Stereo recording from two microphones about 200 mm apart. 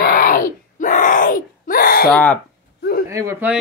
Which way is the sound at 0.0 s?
45° left (ahead or behind).